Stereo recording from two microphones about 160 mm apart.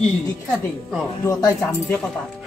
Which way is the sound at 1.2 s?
20° left (ahead or behind).